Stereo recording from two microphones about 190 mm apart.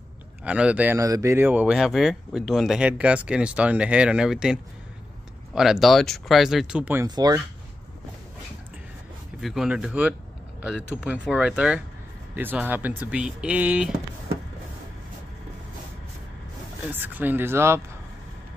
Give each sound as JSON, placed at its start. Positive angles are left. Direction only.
{"t": 0.4, "sound": "speech", "side_deg": -5}
{"t": 7.1, "sound": "speech", "side_deg": -20}
{"t": 9.4, "sound": "speech", "side_deg": 0}
{"t": 16.8, "sound": "speech", "side_deg": -10}